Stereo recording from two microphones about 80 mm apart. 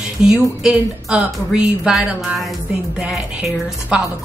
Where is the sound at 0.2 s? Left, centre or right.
Centre.